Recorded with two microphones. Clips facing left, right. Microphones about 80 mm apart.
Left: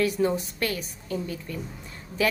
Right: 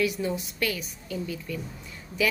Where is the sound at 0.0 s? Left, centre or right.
Left.